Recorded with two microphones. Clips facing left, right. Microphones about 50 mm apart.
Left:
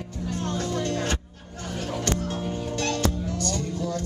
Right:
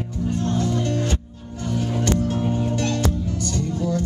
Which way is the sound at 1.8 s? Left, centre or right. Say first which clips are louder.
Right 5 dB; right.